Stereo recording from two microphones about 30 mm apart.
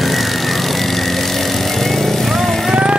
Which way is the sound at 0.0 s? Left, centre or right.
Centre.